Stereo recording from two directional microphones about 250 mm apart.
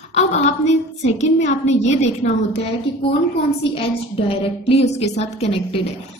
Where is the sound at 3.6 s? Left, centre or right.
Left.